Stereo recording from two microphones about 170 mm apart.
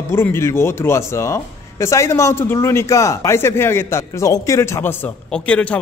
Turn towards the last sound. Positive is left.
turn(degrees=5)  # may be behind; listen again after turning